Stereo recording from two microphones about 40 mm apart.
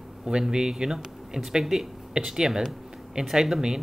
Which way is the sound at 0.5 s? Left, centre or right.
Centre.